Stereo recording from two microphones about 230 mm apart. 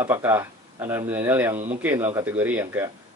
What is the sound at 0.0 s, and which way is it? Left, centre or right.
Speech, centre.